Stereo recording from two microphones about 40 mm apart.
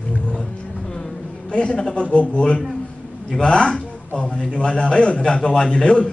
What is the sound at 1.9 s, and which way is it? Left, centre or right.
Speech, left.